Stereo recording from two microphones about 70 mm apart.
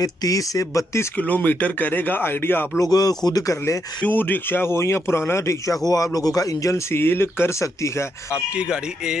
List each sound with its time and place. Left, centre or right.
0.0 s speech: left
1.1 s speech: left
2.8 s speech: left
4.0 s speech: left
6.1 s speech: left
6.9 s speech: left
8.5 s speech: centre